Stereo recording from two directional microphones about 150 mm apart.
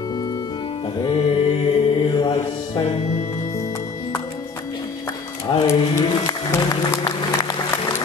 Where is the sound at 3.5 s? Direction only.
20° left (ahead or behind).